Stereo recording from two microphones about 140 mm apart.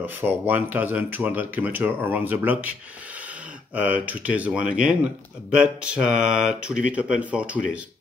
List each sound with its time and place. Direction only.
0.0 s speech: 15° right (ahead or behind)
3.7 s speech: 10° right (ahead or behind)